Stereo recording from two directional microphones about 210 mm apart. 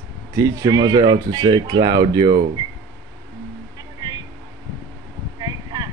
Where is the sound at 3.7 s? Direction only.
20° right (ahead or behind).